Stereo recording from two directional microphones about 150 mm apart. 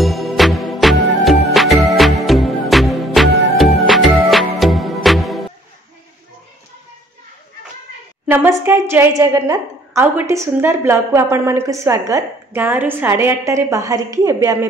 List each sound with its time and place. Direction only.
0.0 s music: centre (ahead or behind)
8.3 s a woman's voice: 15° right (ahead or behind)